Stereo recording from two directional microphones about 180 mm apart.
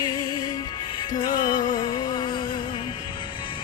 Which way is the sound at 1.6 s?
25° left (ahead or behind).